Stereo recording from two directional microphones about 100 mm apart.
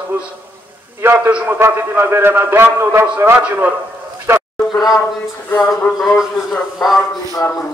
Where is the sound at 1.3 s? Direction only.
10° right (ahead or behind).